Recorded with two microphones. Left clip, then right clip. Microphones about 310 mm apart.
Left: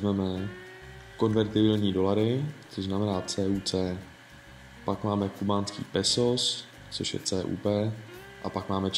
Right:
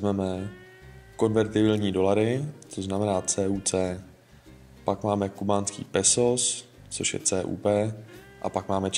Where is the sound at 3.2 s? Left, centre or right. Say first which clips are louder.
Right 3 dB; right.